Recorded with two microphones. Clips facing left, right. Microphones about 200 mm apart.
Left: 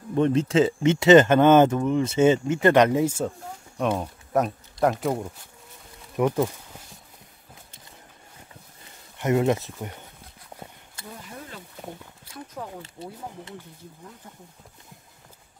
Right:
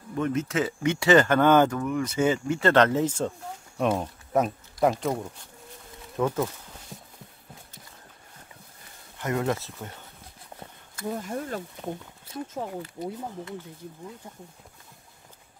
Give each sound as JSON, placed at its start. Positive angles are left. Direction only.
{"t": 0.1, "sound": "speech", "side_deg": 30}
{"t": 6.1, "sound": "speech", "side_deg": 15}
{"t": 9.2, "sound": "speech", "side_deg": 20}
{"t": 11.1, "sound": "speech", "side_deg": -50}
{"t": 12.8, "sound": "speech", "side_deg": 25}